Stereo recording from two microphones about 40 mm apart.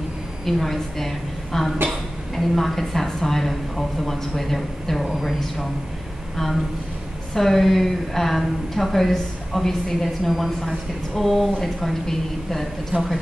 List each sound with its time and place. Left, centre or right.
0.5 s a woman's voice: centre
7.3 s a woman's voice: centre
12.9 s speech: right